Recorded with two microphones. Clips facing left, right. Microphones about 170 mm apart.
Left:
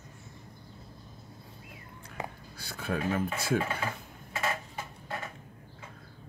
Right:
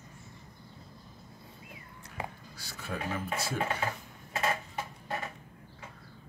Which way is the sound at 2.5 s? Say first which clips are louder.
Left 7 dB; 55° left (ahead or behind).